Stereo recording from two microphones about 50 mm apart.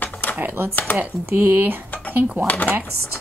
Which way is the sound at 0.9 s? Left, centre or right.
Left.